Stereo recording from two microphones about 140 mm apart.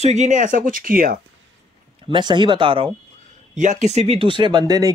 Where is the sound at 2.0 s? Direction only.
35° right (ahead or behind).